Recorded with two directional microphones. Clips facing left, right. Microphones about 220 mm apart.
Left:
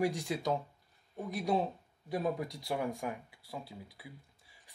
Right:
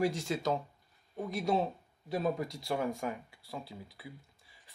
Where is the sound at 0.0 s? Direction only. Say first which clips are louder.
Right 1 dB; 15° left (ahead or behind).